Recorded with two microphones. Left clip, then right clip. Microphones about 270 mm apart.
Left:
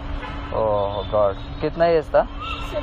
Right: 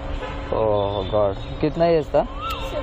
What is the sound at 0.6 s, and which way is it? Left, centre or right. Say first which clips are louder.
Speech: even; right.